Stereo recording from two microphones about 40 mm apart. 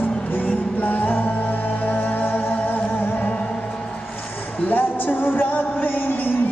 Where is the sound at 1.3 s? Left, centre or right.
Left.